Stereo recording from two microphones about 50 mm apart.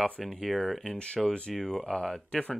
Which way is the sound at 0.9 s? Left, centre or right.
Centre.